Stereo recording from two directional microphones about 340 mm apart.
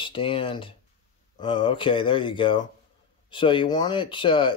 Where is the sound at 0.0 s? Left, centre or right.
Centre.